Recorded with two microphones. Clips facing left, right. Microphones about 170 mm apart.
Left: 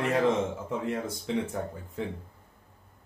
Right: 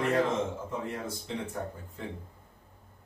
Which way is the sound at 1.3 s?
90° left.